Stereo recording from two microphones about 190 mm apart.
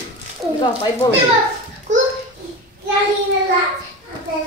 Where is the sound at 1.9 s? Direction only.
40° right (ahead or behind).